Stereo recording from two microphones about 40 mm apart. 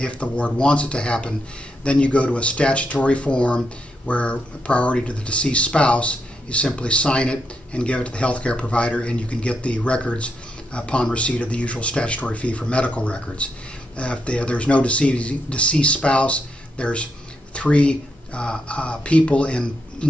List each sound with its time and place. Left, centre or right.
0.0 s speech: left